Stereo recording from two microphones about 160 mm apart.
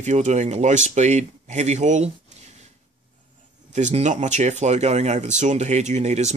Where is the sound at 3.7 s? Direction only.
45° right (ahead or behind).